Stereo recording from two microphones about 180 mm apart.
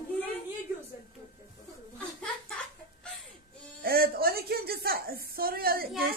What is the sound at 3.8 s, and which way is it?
A woman's voice, 55° right (ahead or behind).